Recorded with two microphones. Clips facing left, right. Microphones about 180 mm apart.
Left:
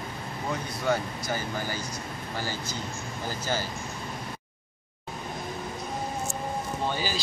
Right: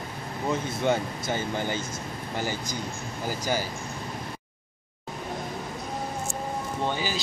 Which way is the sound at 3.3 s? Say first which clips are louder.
Right 3 dB; 15° right (ahead or behind).